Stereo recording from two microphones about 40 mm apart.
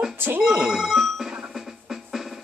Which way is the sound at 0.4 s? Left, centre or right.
Centre.